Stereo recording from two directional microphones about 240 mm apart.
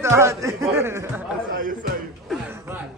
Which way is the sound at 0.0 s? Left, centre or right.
Centre.